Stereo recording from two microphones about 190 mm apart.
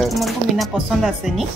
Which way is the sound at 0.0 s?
Centre (ahead or behind).